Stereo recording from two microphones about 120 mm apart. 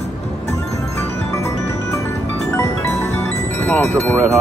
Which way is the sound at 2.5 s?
20° left (ahead or behind).